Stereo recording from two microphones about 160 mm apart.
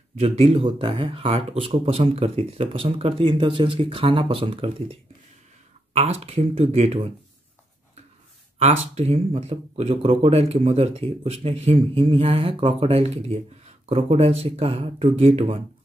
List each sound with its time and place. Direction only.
0.2 s speech: 35° right (ahead or behind)
5.9 s speech: 40° right (ahead or behind)
8.5 s speech: 40° right (ahead or behind)